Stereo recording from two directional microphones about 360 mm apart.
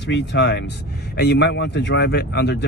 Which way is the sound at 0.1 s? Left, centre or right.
Left.